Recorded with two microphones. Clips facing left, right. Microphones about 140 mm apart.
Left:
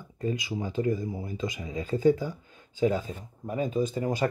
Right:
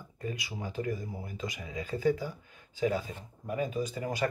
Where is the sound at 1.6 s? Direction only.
35° left (ahead or behind).